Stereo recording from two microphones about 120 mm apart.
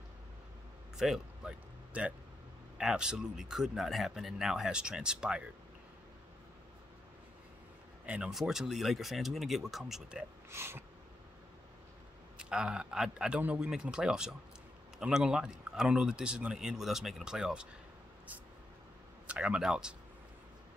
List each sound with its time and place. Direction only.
0.9 s a man's voice: 5° right (ahead or behind)
8.0 s speech: 10° right (ahead or behind)
10.5 s a sound: 20° right (ahead or behind)
12.4 s a man's voice: 5° right (ahead or behind)
19.2 s speech: 10° right (ahead or behind)